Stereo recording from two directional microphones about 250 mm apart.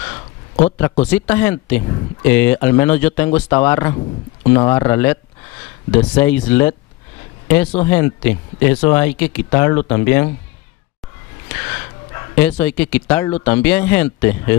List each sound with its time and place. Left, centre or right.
0.7 s speech: centre
12.4 s speech: centre